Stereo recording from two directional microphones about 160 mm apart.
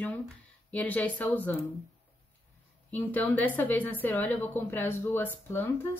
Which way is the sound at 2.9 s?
10° left (ahead or behind).